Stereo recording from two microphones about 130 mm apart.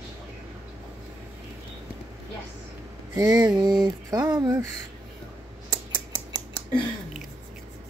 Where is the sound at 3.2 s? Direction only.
30° right (ahead or behind).